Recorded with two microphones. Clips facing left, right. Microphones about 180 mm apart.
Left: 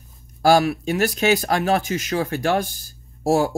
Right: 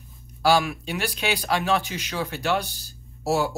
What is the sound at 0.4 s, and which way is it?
Speech, 45° left (ahead or behind).